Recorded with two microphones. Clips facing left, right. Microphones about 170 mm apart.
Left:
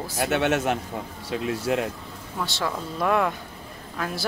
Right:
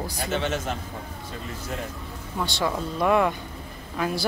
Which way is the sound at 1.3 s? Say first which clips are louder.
Left 11 dB; 85° left.